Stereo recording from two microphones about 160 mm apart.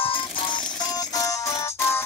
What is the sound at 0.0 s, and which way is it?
Music, 30° left (ahead or behind).